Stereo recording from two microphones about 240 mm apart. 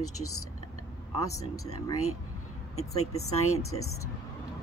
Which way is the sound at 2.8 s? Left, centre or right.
Left.